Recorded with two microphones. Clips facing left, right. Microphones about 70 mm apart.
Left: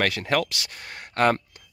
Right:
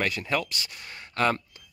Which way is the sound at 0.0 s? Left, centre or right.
Left.